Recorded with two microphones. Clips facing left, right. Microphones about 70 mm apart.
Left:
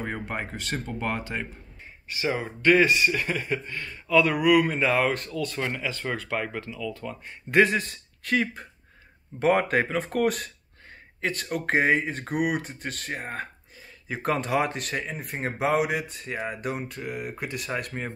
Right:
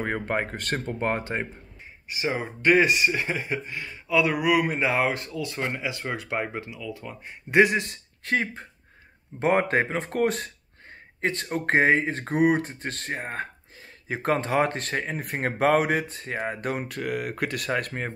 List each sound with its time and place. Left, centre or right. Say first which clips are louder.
0.0 s speech: right 5 dB; right
2.0 s speech: even; centre
8.3 s speech: left 1 dB; right